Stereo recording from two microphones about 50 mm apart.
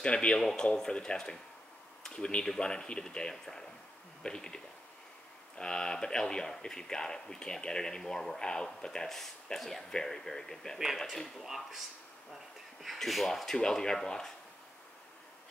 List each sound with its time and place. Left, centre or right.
0.0 s speech: centre
0.4 s speech: centre
0.7 s speech: centre
5.6 s speech: centre
11.3 s speech: centre
12.8 s speech: centre